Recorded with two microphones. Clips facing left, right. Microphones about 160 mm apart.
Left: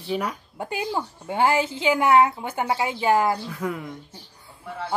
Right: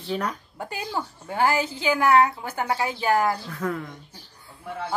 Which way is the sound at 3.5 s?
10° left (ahead or behind).